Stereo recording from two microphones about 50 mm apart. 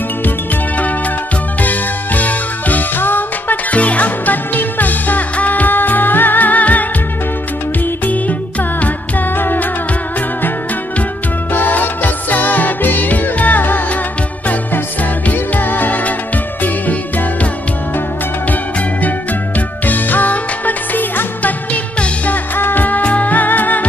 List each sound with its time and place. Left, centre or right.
1.6 s music: left
8.1 s music: left
11.5 s music: left
15.3 s music: left
18.5 s music: left